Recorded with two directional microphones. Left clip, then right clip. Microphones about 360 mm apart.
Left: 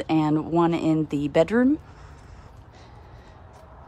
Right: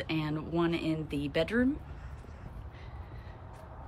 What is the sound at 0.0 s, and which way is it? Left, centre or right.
Speech, centre.